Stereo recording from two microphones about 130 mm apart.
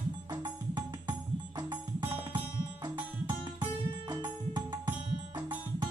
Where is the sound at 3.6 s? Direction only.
35° right (ahead or behind).